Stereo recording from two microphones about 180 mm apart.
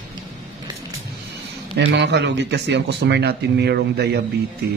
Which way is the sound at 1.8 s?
75° right (ahead or behind).